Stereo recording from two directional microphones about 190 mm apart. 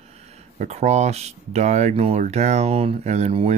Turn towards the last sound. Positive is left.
turn(degrees=-35)  # may be behind; listen again after turning